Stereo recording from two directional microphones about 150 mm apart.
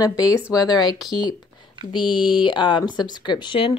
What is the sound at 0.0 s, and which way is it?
Speech, 25° left (ahead or behind).